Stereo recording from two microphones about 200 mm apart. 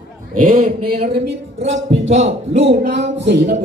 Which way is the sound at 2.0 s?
35° right (ahead or behind).